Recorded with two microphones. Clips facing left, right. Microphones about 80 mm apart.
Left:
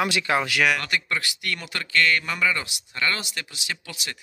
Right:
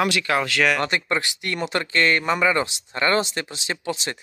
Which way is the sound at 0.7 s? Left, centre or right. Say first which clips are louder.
Right 4 dB; right.